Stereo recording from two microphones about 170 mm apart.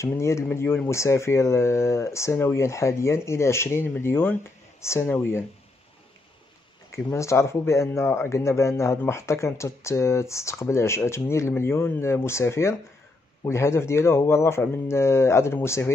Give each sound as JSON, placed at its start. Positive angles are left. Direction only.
{"t": 0.0, "sound": "speech", "side_deg": 15}
{"t": 6.9, "sound": "speech", "side_deg": 15}